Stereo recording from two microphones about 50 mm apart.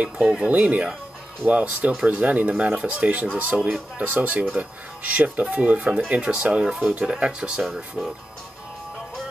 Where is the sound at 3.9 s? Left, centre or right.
Right.